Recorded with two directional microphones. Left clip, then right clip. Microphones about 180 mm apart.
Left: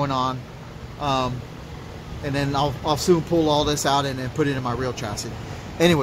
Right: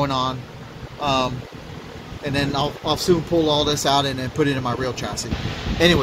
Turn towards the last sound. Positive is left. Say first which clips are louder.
# right 2 dB
turn(degrees=20)  # may be behind; listen again after turning